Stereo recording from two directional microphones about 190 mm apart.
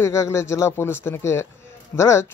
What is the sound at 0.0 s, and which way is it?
Speech, 15° left (ahead or behind).